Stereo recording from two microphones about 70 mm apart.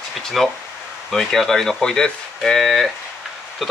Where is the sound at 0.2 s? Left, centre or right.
Centre.